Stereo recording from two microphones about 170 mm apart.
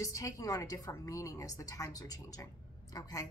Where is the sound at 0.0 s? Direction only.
20° left (ahead or behind).